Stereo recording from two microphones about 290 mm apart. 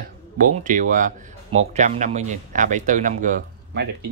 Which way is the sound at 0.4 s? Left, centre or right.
Right.